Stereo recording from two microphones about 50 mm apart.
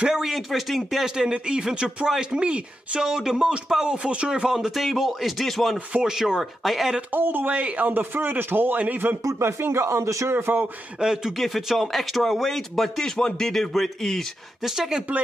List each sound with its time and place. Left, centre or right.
0.0 s speech: centre
1.0 s speech: centre
3.0 s speech: centre
4.6 s speech: centre
6.0 s speech: centre
7.1 s speech: right
7.4 s a man's voice: right
9.2 s speech: right
10.3 s speech: right
11.0 s speech: centre
11.3 s speech: centre
14.6 s speech: centre